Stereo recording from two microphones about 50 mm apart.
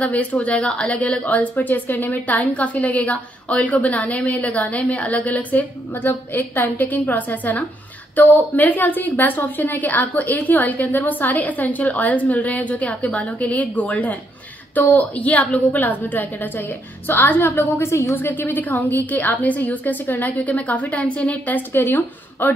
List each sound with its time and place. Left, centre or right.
0.0 s a woman's voice: left
6.0 s a woman's voice: left
17.7 s a woman's voice: left
18.1 s a woman's voice: left
21.8 s speech: left